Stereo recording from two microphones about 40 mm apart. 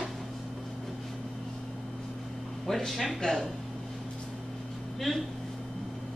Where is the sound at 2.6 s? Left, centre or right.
Centre.